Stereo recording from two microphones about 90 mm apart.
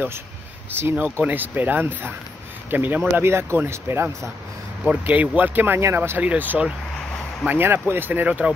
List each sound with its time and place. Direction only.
0.7 s speech: 20° right (ahead or behind)
4.8 s speech: 15° right (ahead or behind)